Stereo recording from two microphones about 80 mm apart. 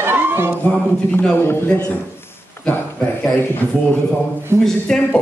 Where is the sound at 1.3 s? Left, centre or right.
Left.